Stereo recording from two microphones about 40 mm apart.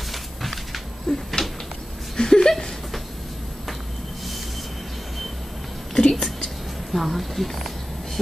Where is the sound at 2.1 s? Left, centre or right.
Centre.